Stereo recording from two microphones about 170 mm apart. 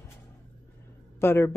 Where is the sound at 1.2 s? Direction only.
15° left (ahead or behind).